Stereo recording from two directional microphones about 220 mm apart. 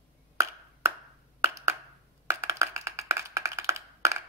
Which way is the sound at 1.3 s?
15° right (ahead or behind).